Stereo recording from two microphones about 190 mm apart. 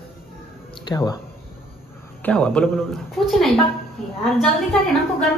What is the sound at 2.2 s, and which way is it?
A man's voice, 5° left (ahead or behind).